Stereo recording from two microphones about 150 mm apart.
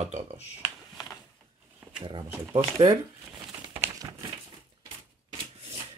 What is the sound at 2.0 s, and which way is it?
Speech, 35° right (ahead or behind).